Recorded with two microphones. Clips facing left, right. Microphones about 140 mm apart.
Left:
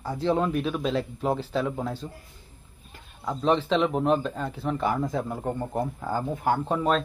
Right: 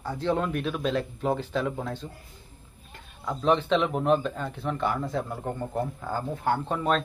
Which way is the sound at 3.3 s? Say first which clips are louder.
Even; centre (ahead or behind).